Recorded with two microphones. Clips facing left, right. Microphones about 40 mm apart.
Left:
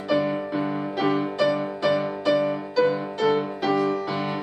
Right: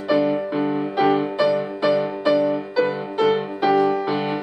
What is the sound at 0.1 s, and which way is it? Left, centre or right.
Music, centre.